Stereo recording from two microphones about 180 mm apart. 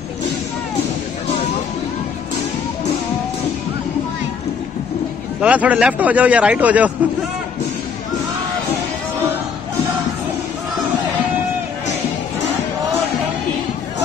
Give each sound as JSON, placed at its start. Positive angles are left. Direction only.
{"t": 5.4, "sound": "a man's voice", "side_deg": -10}